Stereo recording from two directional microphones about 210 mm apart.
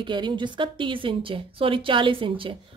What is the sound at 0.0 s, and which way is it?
A woman's voice, 20° right (ahead or behind).